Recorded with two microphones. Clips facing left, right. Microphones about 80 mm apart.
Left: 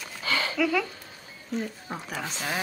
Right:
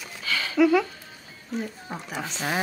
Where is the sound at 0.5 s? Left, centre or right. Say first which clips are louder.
Right 8 dB; right.